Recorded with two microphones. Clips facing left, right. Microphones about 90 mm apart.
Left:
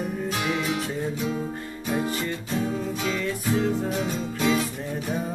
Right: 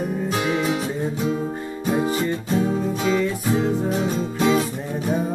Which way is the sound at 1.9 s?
20° right (ahead or behind).